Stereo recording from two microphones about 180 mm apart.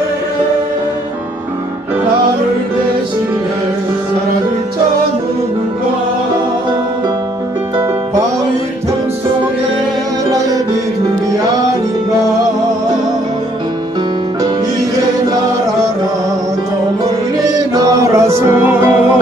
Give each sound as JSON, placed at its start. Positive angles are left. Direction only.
{"t": 7.7, "sound": "music", "side_deg": -20}
{"t": 17.5, "sound": "music", "side_deg": -20}